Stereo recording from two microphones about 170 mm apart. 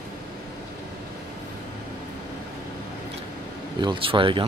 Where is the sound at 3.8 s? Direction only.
30° right (ahead or behind).